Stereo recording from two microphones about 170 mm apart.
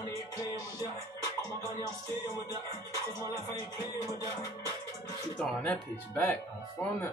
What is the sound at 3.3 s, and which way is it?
Music, 20° left (ahead or behind).